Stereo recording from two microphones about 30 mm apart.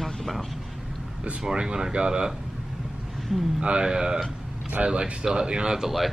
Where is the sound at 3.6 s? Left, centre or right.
Right.